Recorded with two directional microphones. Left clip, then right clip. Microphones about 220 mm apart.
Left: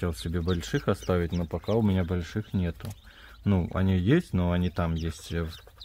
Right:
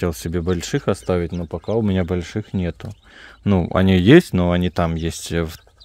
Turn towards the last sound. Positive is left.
turn(degrees=-45)  # may be behind; listen again after turning